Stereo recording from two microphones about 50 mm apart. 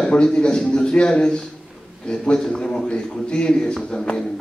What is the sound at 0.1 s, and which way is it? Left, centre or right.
A man's voice, centre.